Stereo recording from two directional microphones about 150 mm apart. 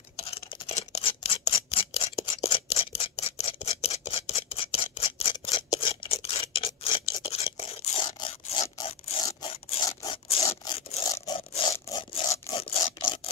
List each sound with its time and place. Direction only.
0.2 s scissors: 40° left (ahead or behind)
9.2 s a sound: 35° left (ahead or behind)
10.7 s rub: 40° left (ahead or behind)
11.3 s zipper: 40° left (ahead or behind)
11.9 s scratch: 25° left (ahead or behind)
12.4 s a sound: 40° left (ahead or behind)